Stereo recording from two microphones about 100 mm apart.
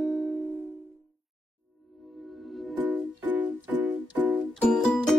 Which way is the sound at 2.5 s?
Centre (ahead or behind).